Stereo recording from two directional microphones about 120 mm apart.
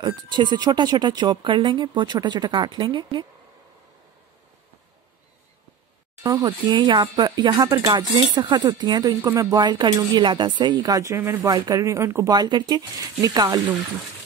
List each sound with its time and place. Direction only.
0.0 s speech: 40° right (ahead or behind)
6.2 s speech: 35° right (ahead or behind)
9.6 s speech: 35° right (ahead or behind)